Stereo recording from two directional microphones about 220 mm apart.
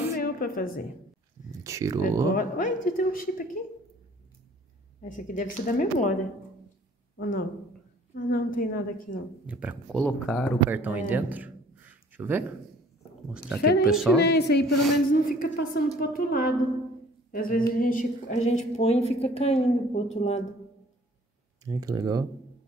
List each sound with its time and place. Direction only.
0.2 s a woman's voice: 40° left (ahead or behind)
1.6 s speech: 15° right (ahead or behind)
2.3 s a woman's voice: 40° left (ahead or behind)
5.0 s a woman's voice: 35° left (ahead or behind)
7.2 s a woman's voice: 40° left (ahead or behind)
9.5 s speech: 5° right (ahead or behind)
9.9 s speech: 5° left (ahead or behind)
10.7 s a man's voice: 10° right (ahead or behind)
14.2 s a woman's voice: 50° left (ahead or behind); by 20.4 s 30° left (ahead or behind)
21.6 s speech: 15° right (ahead or behind)